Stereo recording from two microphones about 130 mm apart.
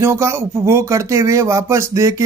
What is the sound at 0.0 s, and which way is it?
Speech, 20° right (ahead or behind).